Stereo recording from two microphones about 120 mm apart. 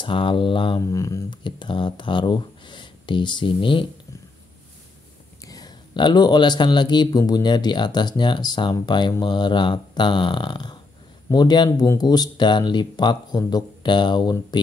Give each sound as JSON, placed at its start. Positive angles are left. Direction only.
{"t": 0.0, "sound": "a sound", "side_deg": 45}
{"t": 0.8, "sound": "speech", "side_deg": 25}
{"t": 1.3, "sound": "speech", "side_deg": 40}
{"t": 5.4, "sound": "speech", "side_deg": 30}